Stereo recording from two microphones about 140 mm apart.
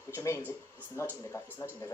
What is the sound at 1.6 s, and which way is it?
Speech, 20° left (ahead or behind).